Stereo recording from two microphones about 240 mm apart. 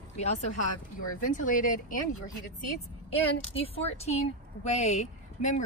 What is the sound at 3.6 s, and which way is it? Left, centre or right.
Speech, left.